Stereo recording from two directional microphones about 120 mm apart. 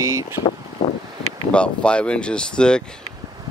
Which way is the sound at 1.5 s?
10° left (ahead or behind).